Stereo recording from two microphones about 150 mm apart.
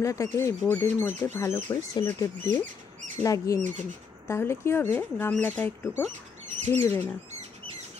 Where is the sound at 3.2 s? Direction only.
25° left (ahead or behind).